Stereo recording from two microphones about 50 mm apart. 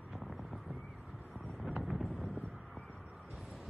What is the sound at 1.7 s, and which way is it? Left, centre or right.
Vehicle, centre.